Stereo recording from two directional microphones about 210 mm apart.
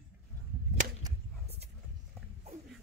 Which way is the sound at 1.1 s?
15° right (ahead or behind).